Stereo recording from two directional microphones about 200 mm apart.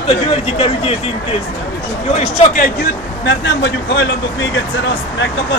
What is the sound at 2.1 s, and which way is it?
Speech, 40° left (ahead or behind).